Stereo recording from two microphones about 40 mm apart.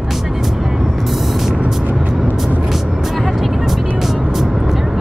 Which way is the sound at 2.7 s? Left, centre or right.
Centre.